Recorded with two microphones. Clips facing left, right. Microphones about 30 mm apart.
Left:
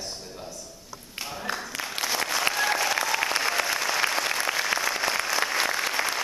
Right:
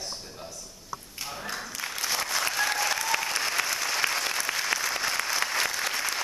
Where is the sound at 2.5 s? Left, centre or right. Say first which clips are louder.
Left 2 dB; centre.